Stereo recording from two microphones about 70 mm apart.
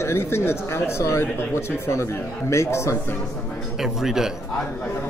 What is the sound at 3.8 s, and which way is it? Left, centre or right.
Speech, centre.